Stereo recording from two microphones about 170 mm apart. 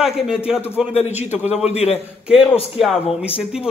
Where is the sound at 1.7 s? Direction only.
40° left (ahead or behind).